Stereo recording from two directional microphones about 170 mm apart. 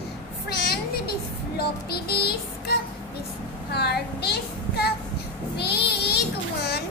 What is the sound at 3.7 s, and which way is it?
Speech, 75° left (ahead or behind).